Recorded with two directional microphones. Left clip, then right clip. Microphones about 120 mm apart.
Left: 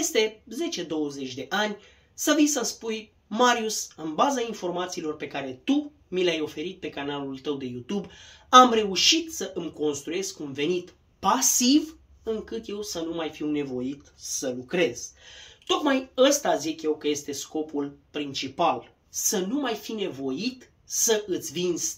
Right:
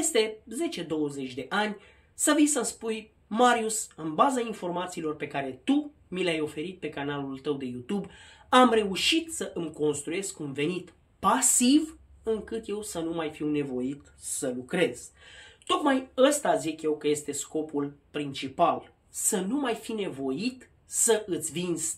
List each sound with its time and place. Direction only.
0.1 s speech: 35° right (ahead or behind)